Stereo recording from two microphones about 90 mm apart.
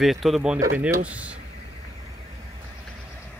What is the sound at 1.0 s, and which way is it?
Speech, 15° right (ahead or behind).